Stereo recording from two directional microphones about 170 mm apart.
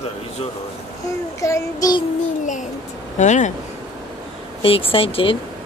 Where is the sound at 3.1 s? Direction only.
45° left (ahead or behind).